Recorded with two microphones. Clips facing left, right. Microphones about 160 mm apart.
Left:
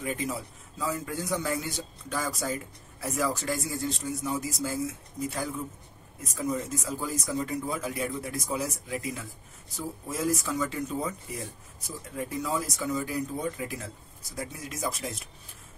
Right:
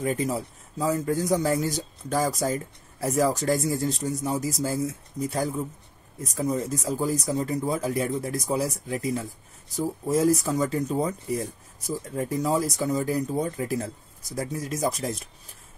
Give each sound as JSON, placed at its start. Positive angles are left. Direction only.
{"t": 0.0, "sound": "a man's voice", "side_deg": -40}